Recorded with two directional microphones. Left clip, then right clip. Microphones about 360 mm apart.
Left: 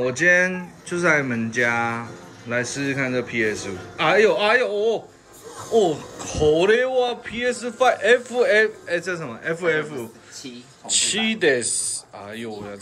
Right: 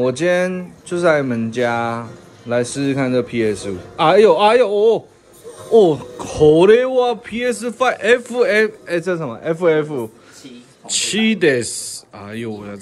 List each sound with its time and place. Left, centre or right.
0.0 s speech: centre
4.7 s speech: right
5.9 s speech: centre